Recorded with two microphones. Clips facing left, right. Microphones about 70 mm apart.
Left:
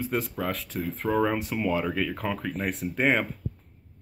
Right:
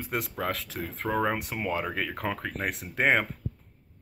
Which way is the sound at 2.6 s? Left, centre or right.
Right.